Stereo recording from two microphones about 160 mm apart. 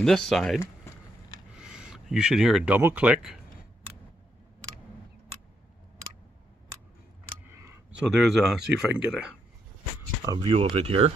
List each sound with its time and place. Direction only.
0.0 s speech: centre (ahead or behind)
1.6 s speech: 5° right (ahead or behind)
7.4 s camera: 15° right (ahead or behind)
8.2 s speech: centre (ahead or behind)
10.2 s speech: 30° right (ahead or behind)